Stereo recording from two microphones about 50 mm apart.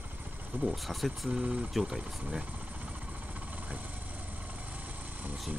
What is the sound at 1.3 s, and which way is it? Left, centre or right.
Speech, right.